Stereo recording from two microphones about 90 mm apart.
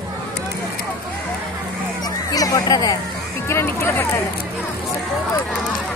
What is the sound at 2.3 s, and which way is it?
Music, 40° left (ahead or behind).